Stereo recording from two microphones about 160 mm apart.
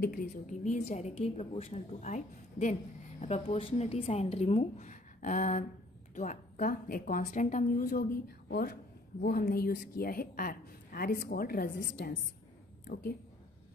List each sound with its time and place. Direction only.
0.0 s a woman's voice: 60° left (ahead or behind)
12.8 s speech: 70° left (ahead or behind)